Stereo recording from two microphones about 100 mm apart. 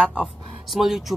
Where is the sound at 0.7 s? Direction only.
5° right (ahead or behind).